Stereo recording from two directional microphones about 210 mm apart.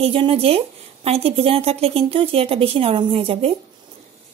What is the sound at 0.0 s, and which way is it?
A woman's voice, 25° right (ahead or behind).